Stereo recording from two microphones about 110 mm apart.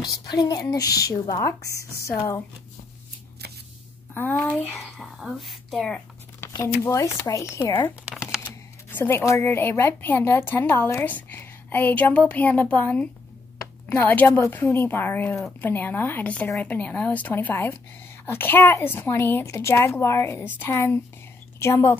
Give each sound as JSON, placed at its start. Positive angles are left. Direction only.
{"t": 0.0, "sound": "a woman's voice", "side_deg": 35}
{"t": 4.1, "sound": "speech", "side_deg": 15}
{"t": 4.7, "sound": "speech", "side_deg": 0}
{"t": 6.5, "sound": "a woman's voice", "side_deg": 30}
{"t": 8.1, "sound": "typing", "side_deg": -5}
{"t": 8.9, "sound": "a woman's voice", "side_deg": 20}